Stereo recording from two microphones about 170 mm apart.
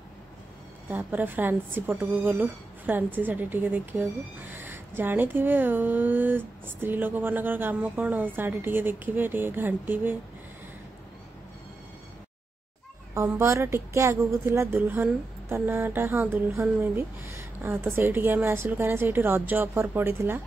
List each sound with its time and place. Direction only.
0.8 s speech: 10° right (ahead or behind)
13.1 s speech: 15° right (ahead or behind)